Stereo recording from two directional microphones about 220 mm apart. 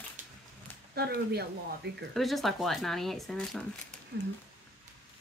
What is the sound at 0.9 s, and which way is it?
Speech, 45° right (ahead or behind).